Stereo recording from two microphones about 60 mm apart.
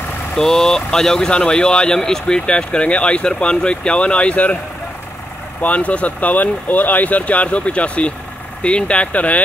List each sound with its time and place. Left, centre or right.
0.4 s speech: centre
5.6 s speech: left